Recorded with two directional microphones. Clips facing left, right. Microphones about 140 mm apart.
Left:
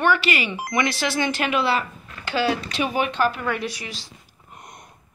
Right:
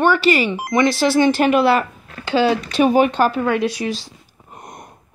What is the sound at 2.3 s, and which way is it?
Speech, 25° right (ahead or behind).